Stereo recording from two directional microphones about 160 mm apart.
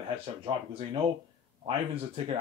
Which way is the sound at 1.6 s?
35° right (ahead or behind).